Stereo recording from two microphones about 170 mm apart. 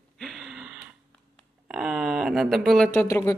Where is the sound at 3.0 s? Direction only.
15° left (ahead or behind).